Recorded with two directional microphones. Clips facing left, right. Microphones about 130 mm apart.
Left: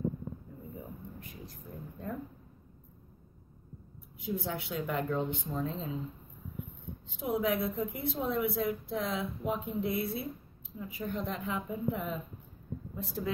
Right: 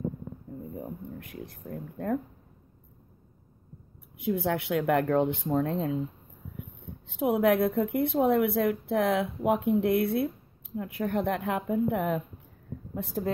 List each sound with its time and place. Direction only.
0.7 s a woman's voice: 55° right (ahead or behind)
4.2 s a woman's voice: 65° right (ahead or behind)
7.1 s a woman's voice: 65° right (ahead or behind)
12.9 s a woman's voice: 55° right (ahead or behind)